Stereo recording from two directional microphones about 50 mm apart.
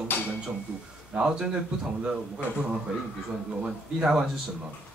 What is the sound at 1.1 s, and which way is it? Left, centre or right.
Speech, centre.